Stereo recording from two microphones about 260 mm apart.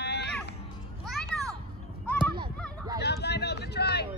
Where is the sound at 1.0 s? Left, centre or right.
Centre.